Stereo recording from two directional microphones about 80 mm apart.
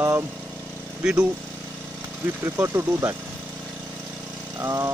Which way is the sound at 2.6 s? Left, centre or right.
Right.